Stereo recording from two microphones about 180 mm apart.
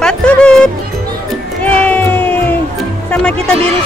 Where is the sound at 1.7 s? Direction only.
10° left (ahead or behind).